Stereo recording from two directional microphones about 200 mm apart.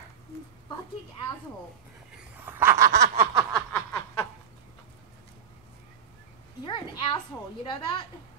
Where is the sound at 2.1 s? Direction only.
10° right (ahead or behind).